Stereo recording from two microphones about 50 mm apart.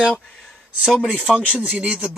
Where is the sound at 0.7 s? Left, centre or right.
Centre.